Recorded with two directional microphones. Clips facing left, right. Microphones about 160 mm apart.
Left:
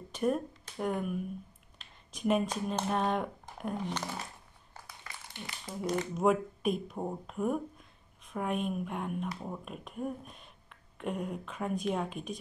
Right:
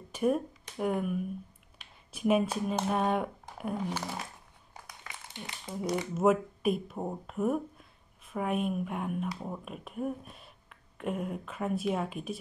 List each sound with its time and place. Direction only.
0.1 s speech: 10° right (ahead or behind)
4.8 s a sound: 15° right (ahead or behind)
6.1 s speech: centre (ahead or behind)